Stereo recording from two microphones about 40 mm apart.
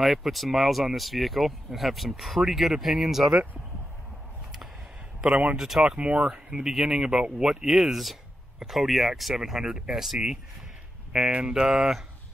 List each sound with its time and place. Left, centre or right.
0.0 s speech: centre
5.2 s speech: right
5.6 s speech: centre
5.9 s speech: right
6.5 s speech: centre
7.4 s speech: centre
9.4 s speech: centre
11.3 s speech: right
11.6 s speech: centre